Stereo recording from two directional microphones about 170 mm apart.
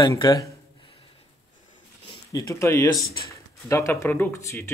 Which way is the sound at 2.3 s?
20° left (ahead or behind).